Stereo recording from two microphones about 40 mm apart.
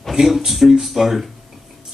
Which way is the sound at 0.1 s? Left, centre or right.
Centre.